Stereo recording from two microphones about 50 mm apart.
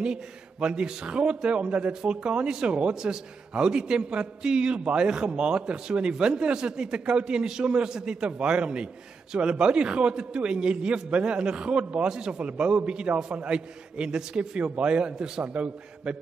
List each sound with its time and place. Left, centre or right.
0.0 s a man's voice: centre